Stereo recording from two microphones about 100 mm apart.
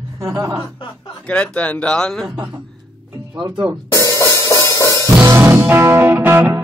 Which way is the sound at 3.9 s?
35° left (ahead or behind).